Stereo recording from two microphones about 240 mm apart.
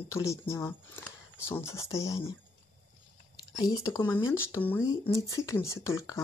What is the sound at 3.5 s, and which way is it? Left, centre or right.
Speech, centre.